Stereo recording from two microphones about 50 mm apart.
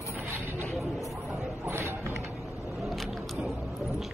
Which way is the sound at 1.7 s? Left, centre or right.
Right.